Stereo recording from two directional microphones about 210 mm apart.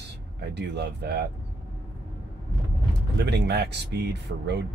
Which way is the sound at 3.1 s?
55° right (ahead or behind).